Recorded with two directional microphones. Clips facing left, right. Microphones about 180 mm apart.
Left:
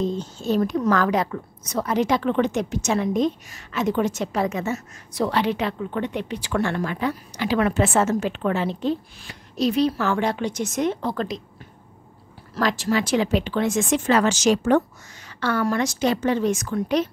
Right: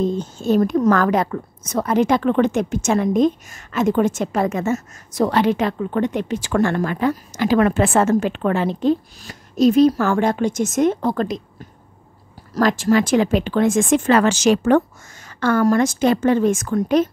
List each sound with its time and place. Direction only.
0.0 s a woman's voice: 50° right (ahead or behind)
12.5 s a woman's voice: 50° right (ahead or behind)
15.2 s a woman's voice: 45° right (ahead or behind)